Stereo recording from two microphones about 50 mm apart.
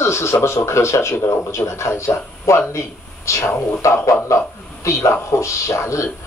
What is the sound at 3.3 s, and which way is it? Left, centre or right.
Speech, left.